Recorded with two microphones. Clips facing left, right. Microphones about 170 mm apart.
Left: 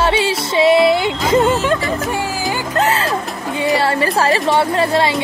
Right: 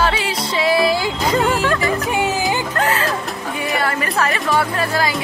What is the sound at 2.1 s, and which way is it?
Speech, 20° right (ahead or behind).